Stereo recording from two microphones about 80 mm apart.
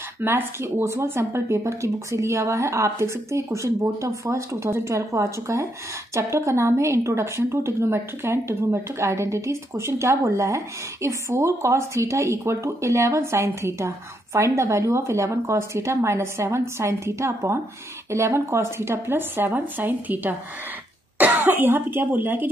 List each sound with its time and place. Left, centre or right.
0.2 s speech: right